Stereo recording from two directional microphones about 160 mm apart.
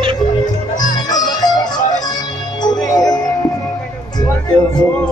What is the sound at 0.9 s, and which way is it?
Music, 25° left (ahead or behind).